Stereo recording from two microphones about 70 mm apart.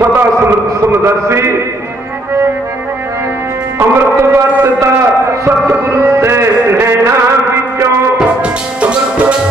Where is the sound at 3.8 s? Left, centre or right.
Right.